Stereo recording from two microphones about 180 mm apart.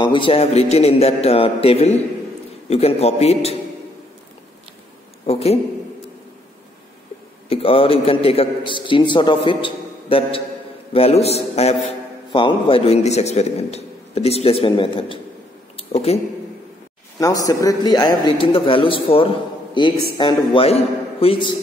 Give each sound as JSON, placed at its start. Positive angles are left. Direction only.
{"t": 0.0, "sound": "a man's voice", "side_deg": 25}
{"t": 5.2, "sound": "a man's voice", "side_deg": 35}
{"t": 7.4, "sound": "a man's voice", "side_deg": 30}
{"t": 15.7, "sound": "a sound", "side_deg": 35}
{"t": 17.2, "sound": "a man's voice", "side_deg": 20}